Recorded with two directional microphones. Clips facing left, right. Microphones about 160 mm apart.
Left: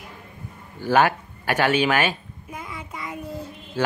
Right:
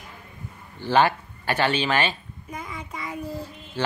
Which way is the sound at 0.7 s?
10° left (ahead or behind).